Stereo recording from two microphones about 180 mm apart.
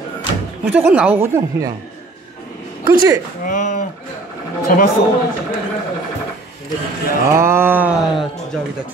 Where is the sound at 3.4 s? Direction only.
45° left (ahead or behind).